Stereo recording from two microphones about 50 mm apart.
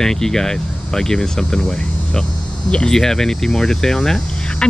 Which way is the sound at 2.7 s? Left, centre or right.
Centre.